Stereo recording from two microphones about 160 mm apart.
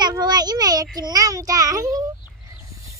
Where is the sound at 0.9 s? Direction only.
20° right (ahead or behind).